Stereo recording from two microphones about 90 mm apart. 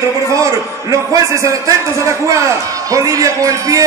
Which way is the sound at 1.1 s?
35° right (ahead or behind).